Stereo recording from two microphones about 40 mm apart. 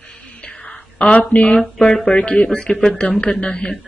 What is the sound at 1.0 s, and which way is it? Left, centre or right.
A woman's voice, left.